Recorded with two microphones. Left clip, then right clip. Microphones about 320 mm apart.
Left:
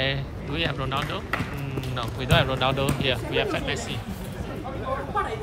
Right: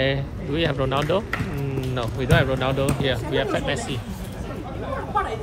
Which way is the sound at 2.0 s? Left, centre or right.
Centre.